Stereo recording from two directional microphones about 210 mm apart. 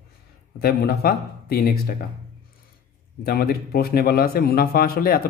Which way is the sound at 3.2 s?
45° left (ahead or behind).